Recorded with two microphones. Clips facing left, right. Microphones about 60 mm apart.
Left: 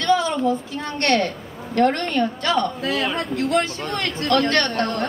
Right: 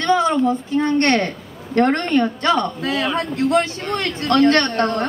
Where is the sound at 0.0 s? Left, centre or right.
Right.